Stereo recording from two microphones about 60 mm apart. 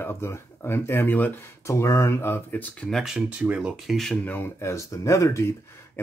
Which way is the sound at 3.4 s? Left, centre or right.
Centre.